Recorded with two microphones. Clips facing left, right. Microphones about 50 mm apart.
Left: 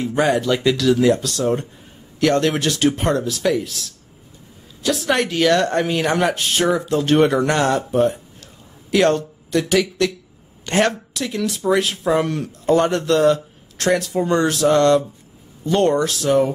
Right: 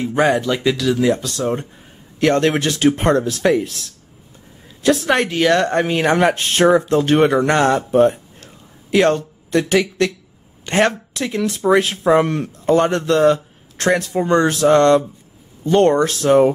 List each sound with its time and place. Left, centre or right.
0.0 s speech: centre
0.3 s speech: centre
1.1 s speech: right
4.8 s speech: right
7.0 s speech: centre
10.6 s a sound: centre
10.9 s speech: right